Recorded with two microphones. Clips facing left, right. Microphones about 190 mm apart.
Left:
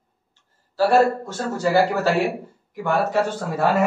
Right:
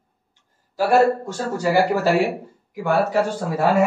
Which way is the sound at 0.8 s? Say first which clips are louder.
Even; 10° right (ahead or behind).